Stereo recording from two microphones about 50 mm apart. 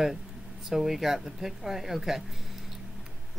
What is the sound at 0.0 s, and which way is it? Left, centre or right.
Speech, centre.